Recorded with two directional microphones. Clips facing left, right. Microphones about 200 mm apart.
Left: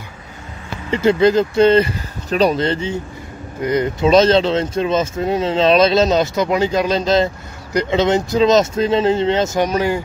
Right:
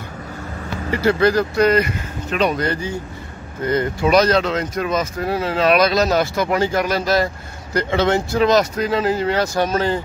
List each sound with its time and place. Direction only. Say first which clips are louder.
0.8 s speech: left 3 dB; 20° left (ahead or behind)